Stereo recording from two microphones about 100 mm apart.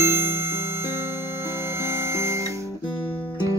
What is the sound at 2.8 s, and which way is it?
Guitar, 60° left (ahead or behind).